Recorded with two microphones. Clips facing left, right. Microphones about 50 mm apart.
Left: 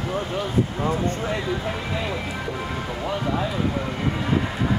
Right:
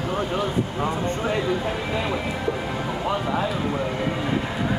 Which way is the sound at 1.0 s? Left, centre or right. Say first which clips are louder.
Right 1 dB; centre.